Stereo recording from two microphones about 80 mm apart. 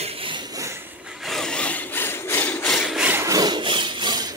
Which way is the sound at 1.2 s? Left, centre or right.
Centre.